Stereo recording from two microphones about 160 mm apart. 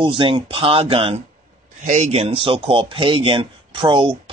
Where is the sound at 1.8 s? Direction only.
45° right (ahead or behind); by 4.2 s 30° right (ahead or behind).